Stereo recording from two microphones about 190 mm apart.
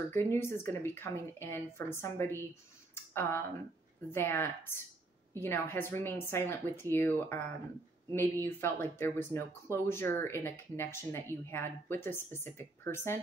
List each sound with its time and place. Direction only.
0.1 s speech: 15° left (ahead or behind)
2.9 s a sound: 10° left (ahead or behind)
4.1 s speech: 15° left (ahead or behind)